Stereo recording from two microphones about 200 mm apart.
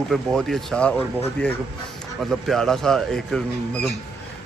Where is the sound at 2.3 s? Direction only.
Centre (ahead or behind).